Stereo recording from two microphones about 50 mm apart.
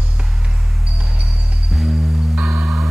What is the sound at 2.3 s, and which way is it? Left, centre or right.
Music, right.